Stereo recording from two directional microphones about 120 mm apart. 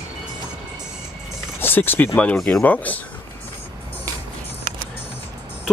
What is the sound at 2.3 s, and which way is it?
Speech, 5° left (ahead or behind).